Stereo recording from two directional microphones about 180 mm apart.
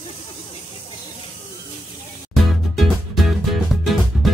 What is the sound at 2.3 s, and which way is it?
Music, centre (ahead or behind).